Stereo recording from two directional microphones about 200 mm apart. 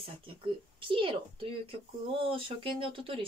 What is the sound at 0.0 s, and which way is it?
Speech, 25° right (ahead or behind).